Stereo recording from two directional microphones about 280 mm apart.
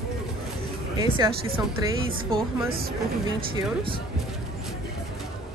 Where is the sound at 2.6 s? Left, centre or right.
Right.